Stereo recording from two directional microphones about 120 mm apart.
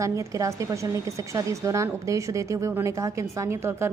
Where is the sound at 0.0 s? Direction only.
25° right (ahead or behind).